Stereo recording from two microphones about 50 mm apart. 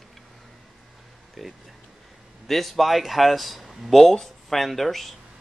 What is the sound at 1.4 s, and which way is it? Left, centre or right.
Speech, centre.